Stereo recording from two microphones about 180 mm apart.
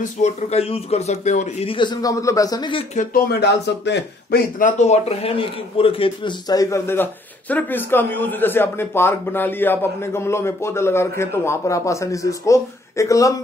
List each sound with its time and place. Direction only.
0.0 s a man's voice: 40° left (ahead or behind); by 2.8 s 25° left (ahead or behind)
3.0 s a man's voice: 60° left (ahead or behind); by 13.3 s 15° left (ahead or behind)